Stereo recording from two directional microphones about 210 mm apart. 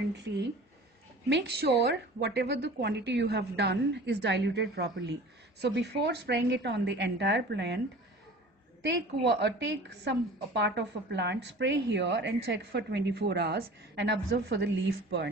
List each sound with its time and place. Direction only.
0.1 s a woman's voice: 55° right (ahead or behind)
8.8 s a woman's voice: 55° right (ahead or behind)